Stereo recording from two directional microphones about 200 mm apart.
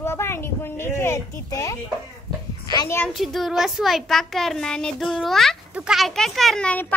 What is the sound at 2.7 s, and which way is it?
Speech, 15° left (ahead or behind).